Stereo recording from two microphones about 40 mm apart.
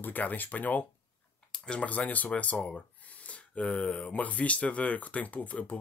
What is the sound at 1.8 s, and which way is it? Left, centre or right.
Speech, left.